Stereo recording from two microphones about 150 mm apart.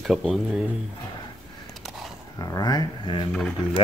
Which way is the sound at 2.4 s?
25° left (ahead or behind).